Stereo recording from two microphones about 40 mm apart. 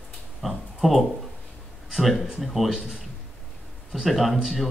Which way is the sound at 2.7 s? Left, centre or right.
Centre.